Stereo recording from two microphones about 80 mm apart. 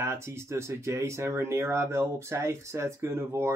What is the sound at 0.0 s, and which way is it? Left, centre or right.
Speech, right.